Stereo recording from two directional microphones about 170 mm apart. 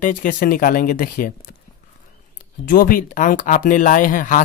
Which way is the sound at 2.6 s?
55° left (ahead or behind).